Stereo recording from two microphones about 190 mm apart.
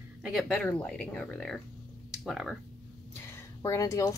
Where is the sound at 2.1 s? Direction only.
Centre (ahead or behind).